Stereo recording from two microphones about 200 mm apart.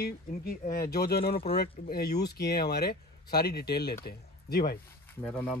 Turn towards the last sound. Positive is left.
turn(degrees=5)  # may be behind; listen again after turning